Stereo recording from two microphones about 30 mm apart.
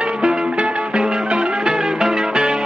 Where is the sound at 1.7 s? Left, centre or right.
Right.